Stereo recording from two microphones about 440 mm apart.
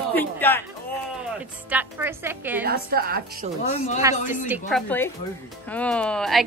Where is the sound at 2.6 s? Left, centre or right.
Right.